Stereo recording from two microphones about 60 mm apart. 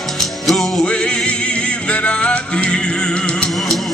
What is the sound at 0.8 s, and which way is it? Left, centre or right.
Music, centre.